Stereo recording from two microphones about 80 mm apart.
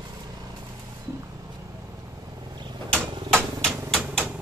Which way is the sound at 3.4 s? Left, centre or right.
Right.